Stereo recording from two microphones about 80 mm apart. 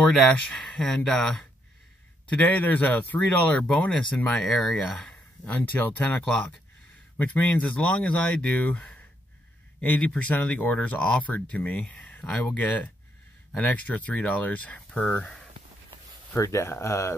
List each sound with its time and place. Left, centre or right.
0.0 s speech: centre
2.2 s speech: centre
5.7 s speech: left
13.6 s speech: centre
16.3 s speech: left